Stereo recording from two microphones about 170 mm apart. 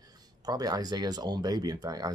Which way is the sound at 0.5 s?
25° right (ahead or behind).